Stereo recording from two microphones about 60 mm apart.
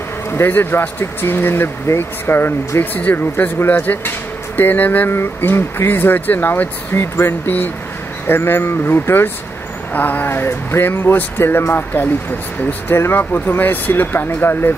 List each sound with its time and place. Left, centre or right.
0.3 s speech: left
2.8 s speech: left
5.1 s speech: left
9.9 s speech: left